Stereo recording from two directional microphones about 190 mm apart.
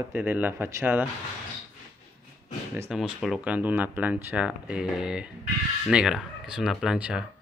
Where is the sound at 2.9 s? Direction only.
Centre (ahead or behind).